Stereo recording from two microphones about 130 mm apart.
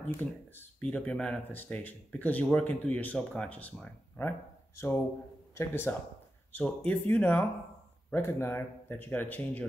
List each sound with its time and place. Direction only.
0.2 s speech: 10° left (ahead or behind)